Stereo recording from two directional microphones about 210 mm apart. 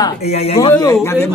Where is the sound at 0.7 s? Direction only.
10° left (ahead or behind).